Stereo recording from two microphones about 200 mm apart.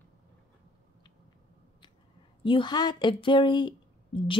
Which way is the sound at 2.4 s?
25° left (ahead or behind).